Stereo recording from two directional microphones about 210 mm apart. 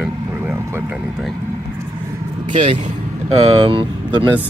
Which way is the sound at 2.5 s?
35° right (ahead or behind).